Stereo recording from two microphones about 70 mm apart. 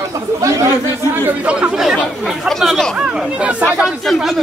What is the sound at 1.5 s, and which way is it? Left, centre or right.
Speech, centre.